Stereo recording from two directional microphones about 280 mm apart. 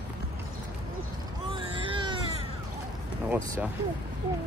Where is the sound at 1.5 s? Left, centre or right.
Centre.